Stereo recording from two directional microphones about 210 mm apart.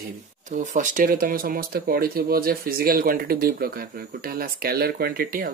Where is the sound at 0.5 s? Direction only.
35° right (ahead or behind).